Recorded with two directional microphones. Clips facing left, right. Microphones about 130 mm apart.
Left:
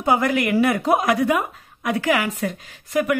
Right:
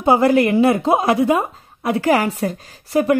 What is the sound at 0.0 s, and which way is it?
A woman's voice, 30° right (ahead or behind).